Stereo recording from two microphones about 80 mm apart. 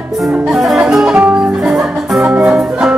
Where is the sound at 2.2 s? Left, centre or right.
Centre.